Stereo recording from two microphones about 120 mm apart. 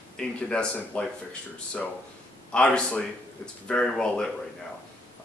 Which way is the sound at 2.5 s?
10° left (ahead or behind).